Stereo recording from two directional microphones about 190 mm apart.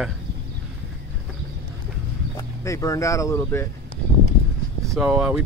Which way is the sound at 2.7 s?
15° left (ahead or behind).